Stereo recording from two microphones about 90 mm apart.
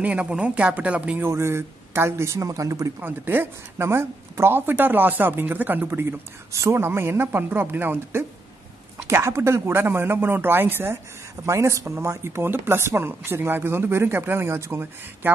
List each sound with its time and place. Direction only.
0.0 s speech: 15° right (ahead or behind)
1.2 s speech: 30° right (ahead or behind)
3.0 s a woman's voice: 25° right (ahead or behind)